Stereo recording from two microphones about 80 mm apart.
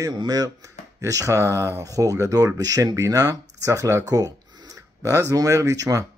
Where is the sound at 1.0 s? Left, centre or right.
Right.